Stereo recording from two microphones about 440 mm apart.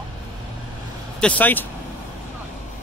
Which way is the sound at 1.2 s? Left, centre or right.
Centre.